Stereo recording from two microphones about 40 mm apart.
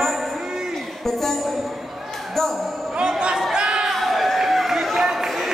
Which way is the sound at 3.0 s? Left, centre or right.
Right.